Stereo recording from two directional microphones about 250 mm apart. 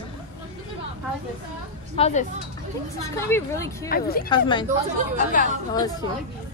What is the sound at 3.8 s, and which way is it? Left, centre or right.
Speech, left.